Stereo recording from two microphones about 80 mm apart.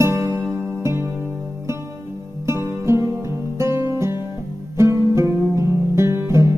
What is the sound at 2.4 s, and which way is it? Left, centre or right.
Music, right.